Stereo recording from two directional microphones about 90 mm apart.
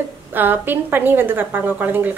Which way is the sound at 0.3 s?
20° right (ahead or behind).